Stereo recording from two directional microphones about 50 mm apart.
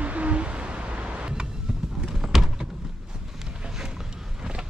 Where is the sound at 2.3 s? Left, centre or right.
Centre.